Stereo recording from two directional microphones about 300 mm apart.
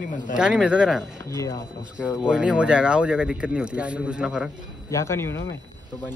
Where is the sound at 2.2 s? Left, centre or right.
Centre.